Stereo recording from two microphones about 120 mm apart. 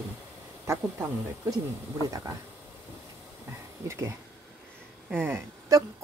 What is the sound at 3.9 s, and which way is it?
A woman's voice, 25° right (ahead or behind).